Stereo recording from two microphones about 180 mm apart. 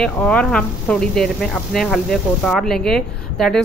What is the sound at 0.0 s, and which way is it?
Speech, 5° left (ahead or behind).